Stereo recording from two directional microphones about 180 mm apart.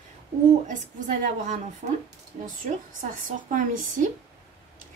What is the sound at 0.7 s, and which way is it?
Speech, 45° right (ahead or behind).